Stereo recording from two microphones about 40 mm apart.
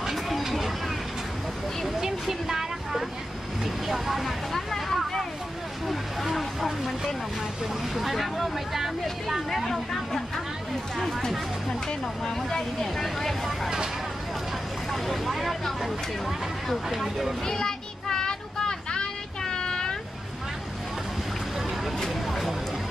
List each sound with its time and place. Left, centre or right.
0.0 s a sound: centre
2.0 s a sound: centre
3.8 s vehicle: centre
7.9 s speech: centre
9.5 s speech: centre
12.3 s speech: centre
14.9 s speech: centre
16.6 s speech: centre
17.5 s child singing: centre
21.9 s a sound: centre